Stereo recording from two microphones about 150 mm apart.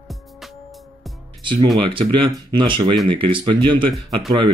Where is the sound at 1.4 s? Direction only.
30° right (ahead or behind).